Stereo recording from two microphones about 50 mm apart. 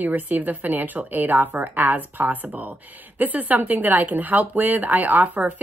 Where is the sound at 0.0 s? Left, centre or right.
Right.